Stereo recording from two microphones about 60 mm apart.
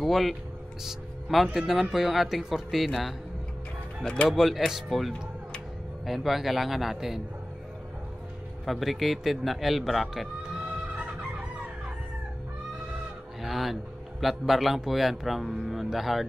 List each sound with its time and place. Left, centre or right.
0.0 s speech: centre
4.0 s speech: centre
4.3 s speech: centre
8.6 s speech: centre
13.4 s fowl: centre
14.2 s speech: centre